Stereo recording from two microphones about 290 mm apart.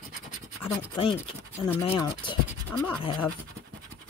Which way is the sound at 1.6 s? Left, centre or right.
Centre.